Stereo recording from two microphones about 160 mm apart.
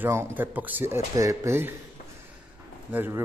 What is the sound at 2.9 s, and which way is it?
Speech, 15° right (ahead or behind).